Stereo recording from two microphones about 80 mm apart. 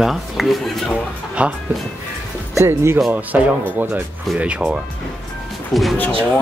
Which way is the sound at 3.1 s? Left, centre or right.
Right.